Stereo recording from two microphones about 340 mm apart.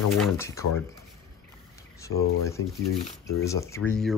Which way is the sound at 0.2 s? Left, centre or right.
Centre.